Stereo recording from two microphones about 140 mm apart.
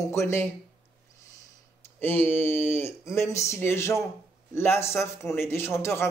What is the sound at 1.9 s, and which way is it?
A man's voice, 15° left (ahead or behind).